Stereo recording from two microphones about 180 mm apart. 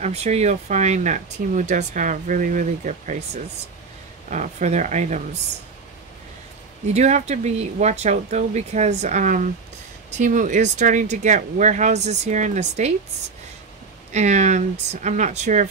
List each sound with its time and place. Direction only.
0.0 s speech: 35° right (ahead or behind)
4.3 s speech: 40° right (ahead or behind)
6.9 s speech: 40° right (ahead or behind)
14.1 s speech: 40° right (ahead or behind)